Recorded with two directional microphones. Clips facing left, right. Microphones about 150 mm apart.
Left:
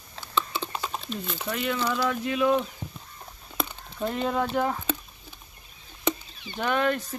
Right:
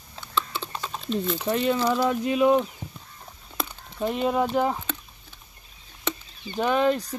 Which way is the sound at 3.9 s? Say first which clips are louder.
Right 3 dB; 10° right (ahead or behind).